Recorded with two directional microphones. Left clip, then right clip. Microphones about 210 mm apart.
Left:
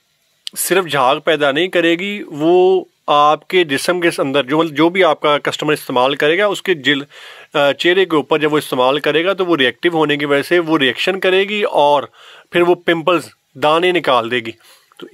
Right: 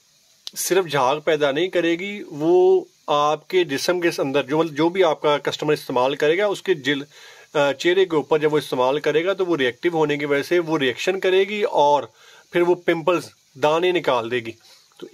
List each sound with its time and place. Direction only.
0.5 s speech: 20° left (ahead or behind)